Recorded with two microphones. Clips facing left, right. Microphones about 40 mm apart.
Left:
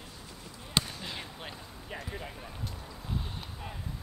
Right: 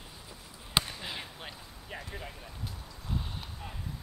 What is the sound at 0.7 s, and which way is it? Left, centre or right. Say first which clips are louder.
Basketball bounce: right 1 dB; centre.